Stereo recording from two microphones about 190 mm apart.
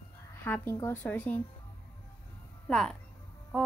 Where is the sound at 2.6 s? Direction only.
Centre (ahead or behind).